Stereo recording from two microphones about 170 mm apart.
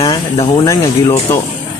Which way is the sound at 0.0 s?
25° left (ahead or behind).